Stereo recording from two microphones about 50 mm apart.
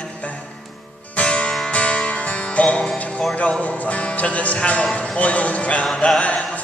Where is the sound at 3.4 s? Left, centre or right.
Left.